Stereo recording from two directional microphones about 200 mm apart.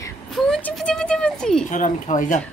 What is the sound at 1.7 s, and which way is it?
Speech, 40° left (ahead or behind).